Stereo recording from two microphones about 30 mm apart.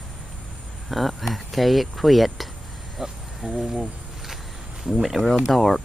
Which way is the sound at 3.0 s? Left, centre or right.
Centre.